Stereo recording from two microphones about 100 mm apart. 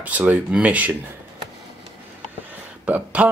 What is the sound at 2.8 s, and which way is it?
Speech, 15° right (ahead or behind).